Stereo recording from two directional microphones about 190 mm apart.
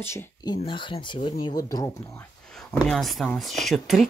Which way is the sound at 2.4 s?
5° left (ahead or behind).